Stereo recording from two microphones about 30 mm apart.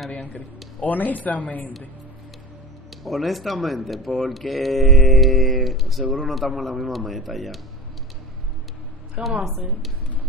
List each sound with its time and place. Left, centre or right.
0.8 s speech: left
3.0 s speech: centre
9.2 s a woman's voice: right